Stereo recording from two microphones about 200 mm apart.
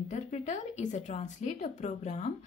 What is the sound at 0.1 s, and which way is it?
Speech, 35° left (ahead or behind).